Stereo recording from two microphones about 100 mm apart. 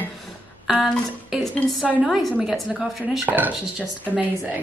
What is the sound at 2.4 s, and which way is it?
Speech, 5° right (ahead or behind).